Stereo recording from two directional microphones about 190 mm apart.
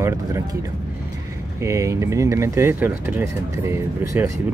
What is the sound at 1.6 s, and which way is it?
Speech, 15° right (ahead or behind).